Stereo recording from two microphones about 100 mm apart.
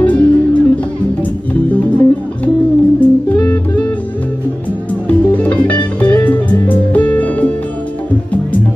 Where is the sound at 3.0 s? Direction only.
15° left (ahead or behind).